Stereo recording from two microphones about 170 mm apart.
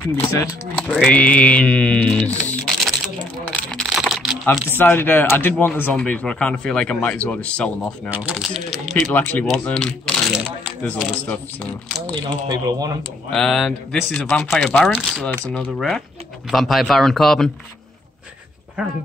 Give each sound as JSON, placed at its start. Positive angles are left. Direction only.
{"t": 0.4, "sound": "speech", "side_deg": 10}
{"t": 3.4, "sound": "a sound", "side_deg": 5}
{"t": 4.7, "sound": "speech", "side_deg": 10}
{"t": 8.1, "sound": "speech", "side_deg": -5}
{"t": 9.1, "sound": "speech", "side_deg": 10}
{"t": 12.2, "sound": "speech", "side_deg": -25}
{"t": 13.3, "sound": "speech", "side_deg": 0}